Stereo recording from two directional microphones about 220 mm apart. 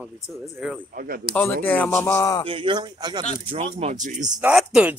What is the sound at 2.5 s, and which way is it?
Speech, 25° right (ahead or behind).